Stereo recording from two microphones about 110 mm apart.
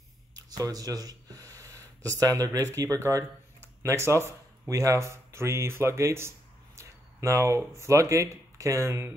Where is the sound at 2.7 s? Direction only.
30° right (ahead or behind).